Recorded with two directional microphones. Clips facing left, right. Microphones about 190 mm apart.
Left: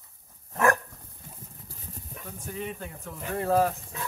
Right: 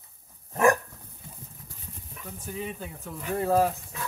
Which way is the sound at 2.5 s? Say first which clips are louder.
Even; 5° right (ahead or behind).